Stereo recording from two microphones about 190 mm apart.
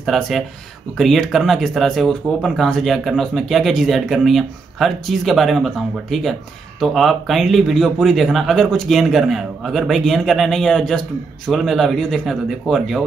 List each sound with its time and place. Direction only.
0.0 s a man's voice: centre (ahead or behind)